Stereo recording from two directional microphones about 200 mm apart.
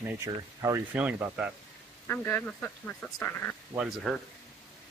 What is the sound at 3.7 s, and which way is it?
Speech, 5° right (ahead or behind).